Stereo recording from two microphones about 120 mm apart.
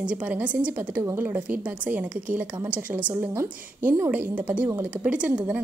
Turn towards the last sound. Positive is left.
turn(degrees=-10)  # may be behind; listen again after turning